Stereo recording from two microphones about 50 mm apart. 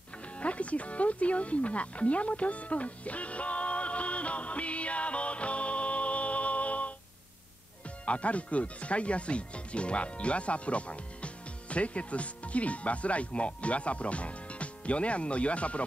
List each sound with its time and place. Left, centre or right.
0.4 s music: left
8.0 s speech: left